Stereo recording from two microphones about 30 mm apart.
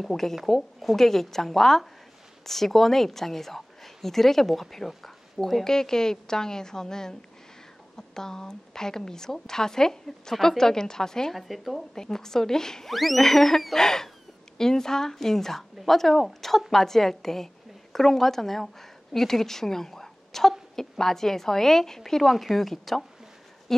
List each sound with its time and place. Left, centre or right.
0.0 s a woman's voice: centre
11.3 s speech: centre
11.9 s a woman's voice: centre
12.9 s speech: centre
13.2 s a woman's voice: centre
13.7 s a woman's voice: centre